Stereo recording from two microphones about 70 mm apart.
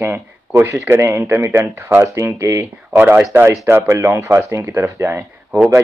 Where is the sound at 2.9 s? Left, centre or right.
Right.